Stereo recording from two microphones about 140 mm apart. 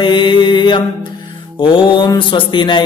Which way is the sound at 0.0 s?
35° left (ahead or behind).